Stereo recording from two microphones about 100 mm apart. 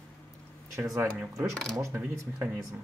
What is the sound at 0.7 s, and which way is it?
Speech, 30° right (ahead or behind).